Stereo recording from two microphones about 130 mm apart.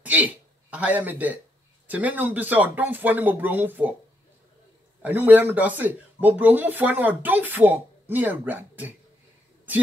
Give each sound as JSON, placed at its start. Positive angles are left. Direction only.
{"t": 0.0, "sound": "speech", "side_deg": -10}
{"t": 5.0, "sound": "speech", "side_deg": -10}